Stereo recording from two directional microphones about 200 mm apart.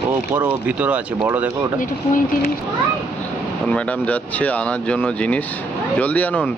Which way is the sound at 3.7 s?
5° left (ahead or behind).